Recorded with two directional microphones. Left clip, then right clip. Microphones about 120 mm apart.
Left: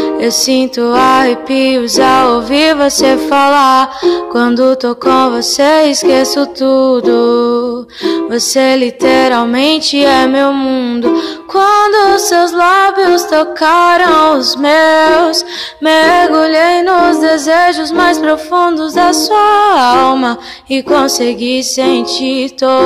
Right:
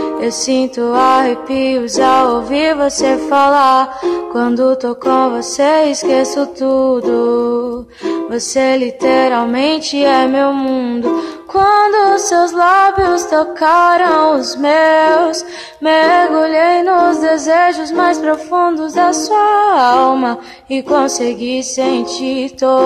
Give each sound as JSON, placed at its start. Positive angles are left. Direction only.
{"t": 0.0, "sound": "music", "side_deg": 15}